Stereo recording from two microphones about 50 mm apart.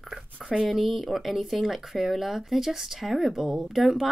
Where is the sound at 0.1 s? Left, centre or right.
Centre.